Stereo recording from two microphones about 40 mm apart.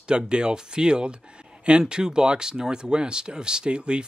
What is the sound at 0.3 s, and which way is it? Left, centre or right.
Speech, right.